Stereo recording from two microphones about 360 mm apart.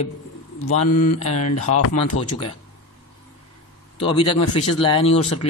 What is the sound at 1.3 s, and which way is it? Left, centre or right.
Speech, left.